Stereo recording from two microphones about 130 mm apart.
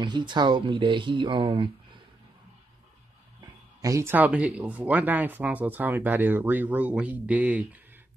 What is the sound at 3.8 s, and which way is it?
Speech, 20° right (ahead or behind).